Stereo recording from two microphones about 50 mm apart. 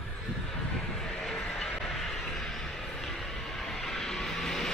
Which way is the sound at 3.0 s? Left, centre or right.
Centre.